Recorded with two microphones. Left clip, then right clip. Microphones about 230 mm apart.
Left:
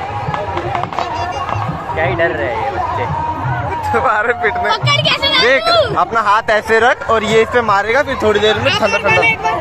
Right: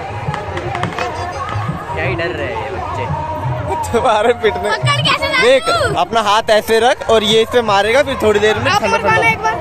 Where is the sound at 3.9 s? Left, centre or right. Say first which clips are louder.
Right 1 dB; right.